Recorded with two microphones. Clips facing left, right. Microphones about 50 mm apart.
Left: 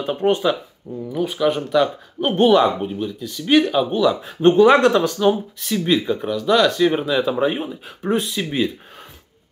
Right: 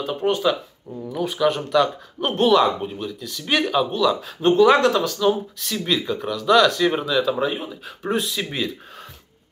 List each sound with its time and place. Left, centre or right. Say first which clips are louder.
0.0 s speech: left 2 dB; left
0.9 s speech: left 2 dB; centre
3.9 s speech: left 2 dB; left
5.6 s speech: left 4 dB; centre